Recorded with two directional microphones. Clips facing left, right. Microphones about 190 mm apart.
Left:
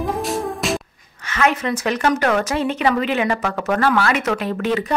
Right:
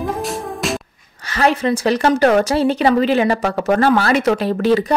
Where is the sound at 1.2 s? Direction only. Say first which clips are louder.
Right 3 dB; 35° right (ahead or behind).